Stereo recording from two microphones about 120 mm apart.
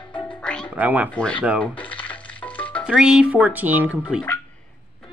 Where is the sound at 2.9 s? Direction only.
5° right (ahead or behind).